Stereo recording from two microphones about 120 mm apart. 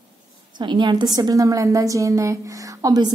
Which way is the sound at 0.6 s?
40° right (ahead or behind).